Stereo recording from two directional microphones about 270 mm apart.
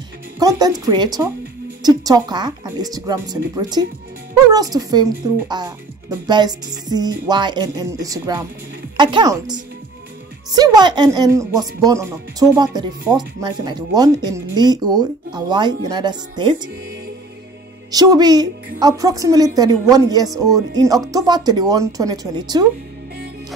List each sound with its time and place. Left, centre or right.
0.4 s speech: centre
17.9 s speech: centre